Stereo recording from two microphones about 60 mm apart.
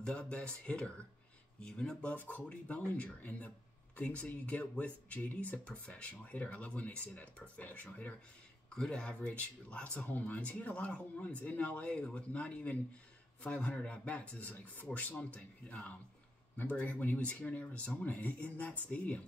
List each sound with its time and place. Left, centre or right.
0.0 s speech: centre
2.1 s speech: left
8.6 s speech: centre